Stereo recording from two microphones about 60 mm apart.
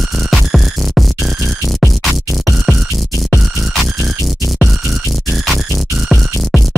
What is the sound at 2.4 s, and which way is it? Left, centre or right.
Music, centre.